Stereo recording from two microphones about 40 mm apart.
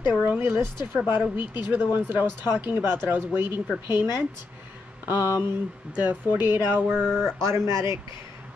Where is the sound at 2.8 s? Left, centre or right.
Right.